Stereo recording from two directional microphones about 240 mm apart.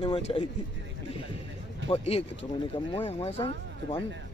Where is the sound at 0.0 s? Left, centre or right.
Left.